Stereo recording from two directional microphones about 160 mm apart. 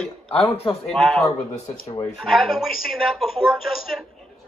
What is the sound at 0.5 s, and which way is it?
Speech, 35° left (ahead or behind).